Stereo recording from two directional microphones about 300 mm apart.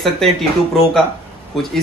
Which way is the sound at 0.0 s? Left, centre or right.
Centre.